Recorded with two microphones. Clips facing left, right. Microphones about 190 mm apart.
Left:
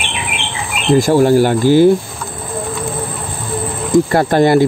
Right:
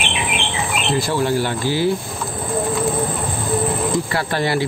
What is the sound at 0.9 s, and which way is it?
Speech, 45° left (ahead or behind).